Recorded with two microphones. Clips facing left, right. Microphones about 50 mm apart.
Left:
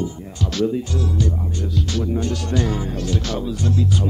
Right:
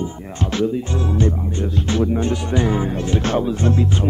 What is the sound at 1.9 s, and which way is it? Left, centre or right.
Speech, right.